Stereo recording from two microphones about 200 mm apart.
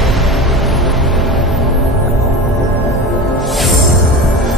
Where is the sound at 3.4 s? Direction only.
Centre (ahead or behind).